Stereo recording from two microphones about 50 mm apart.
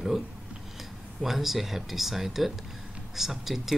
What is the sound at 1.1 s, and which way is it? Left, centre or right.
Speech, centre.